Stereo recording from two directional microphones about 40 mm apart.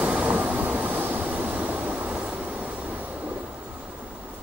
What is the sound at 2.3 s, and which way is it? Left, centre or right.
Train, right.